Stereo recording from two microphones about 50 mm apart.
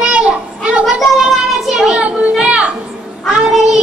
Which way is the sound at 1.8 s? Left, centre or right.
Centre.